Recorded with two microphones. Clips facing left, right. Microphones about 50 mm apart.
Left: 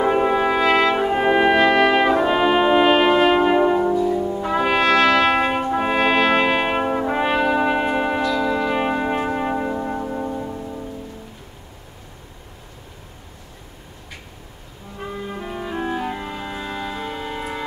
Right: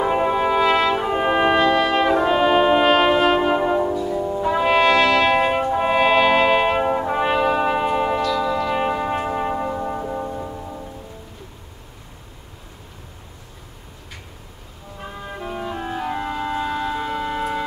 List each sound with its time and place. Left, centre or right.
0.0 s brass instrument: centre
3.8 s music: centre
4.4 s brass instrument: centre
15.3 s music: centre
16.2 s music: centre